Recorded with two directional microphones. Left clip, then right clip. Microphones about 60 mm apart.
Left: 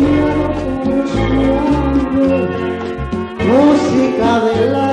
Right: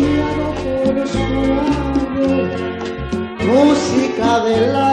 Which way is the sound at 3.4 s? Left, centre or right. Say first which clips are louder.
Left 2 dB; right.